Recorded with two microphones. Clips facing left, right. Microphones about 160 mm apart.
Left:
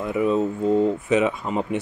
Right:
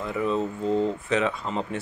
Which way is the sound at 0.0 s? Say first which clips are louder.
Left 5 dB; 15° left (ahead or behind).